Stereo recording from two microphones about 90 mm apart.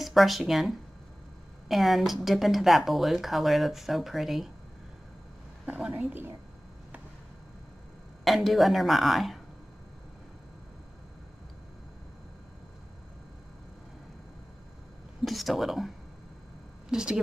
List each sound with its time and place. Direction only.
0.0 s speech: centre (ahead or behind)
5.7 s a woman's voice: 15° right (ahead or behind)
8.2 s speech: centre (ahead or behind)
15.2 s speech: centre (ahead or behind)
16.9 s a woman's voice: 10° right (ahead or behind)